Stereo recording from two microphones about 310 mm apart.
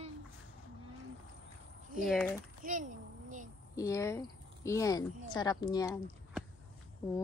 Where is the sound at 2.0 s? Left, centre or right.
Centre.